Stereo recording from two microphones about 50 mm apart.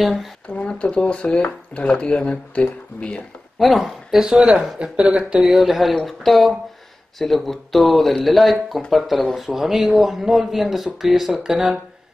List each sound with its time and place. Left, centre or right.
0.7 s speech: left
3.5 s speech: centre
4.2 s a man's voice: centre